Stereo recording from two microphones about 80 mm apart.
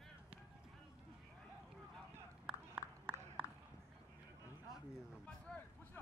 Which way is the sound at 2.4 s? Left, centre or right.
Centre.